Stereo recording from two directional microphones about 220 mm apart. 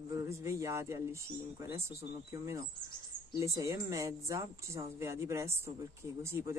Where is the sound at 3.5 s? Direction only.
15° right (ahead or behind).